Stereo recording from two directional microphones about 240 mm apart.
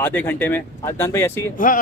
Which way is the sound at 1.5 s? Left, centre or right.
Left.